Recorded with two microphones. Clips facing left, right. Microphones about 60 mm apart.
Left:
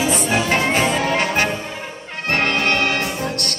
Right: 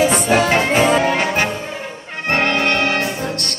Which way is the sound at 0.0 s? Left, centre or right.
Right.